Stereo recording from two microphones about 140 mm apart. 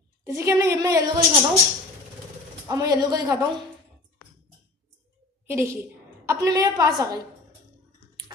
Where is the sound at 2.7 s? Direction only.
25° right (ahead or behind).